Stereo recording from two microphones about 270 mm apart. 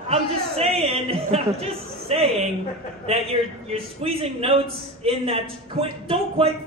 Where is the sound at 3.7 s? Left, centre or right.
Right.